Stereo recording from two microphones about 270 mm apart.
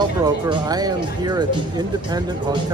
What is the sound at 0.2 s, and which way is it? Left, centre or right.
Speech, centre.